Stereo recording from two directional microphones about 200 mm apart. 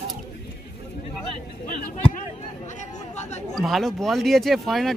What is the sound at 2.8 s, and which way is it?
Chatter, 35° left (ahead or behind).